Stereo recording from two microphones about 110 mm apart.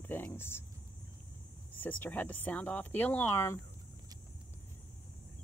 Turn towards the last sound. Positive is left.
turn(degrees=25)  # may be behind; listen again after turning